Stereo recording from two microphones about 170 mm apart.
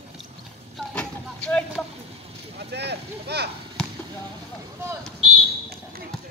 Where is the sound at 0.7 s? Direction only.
5° left (ahead or behind).